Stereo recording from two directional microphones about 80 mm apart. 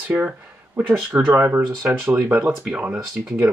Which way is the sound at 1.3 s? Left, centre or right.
Right.